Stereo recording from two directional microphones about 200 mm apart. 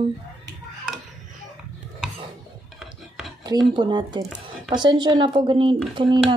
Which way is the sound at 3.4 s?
20° right (ahead or behind).